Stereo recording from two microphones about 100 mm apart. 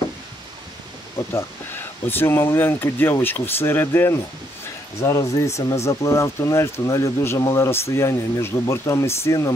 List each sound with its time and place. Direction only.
1.3 s speech: 20° left (ahead or behind)